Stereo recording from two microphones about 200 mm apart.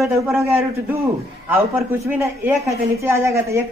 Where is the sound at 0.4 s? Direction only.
15° right (ahead or behind).